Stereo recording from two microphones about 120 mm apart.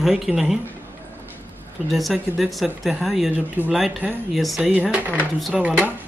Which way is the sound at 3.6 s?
15° right (ahead or behind).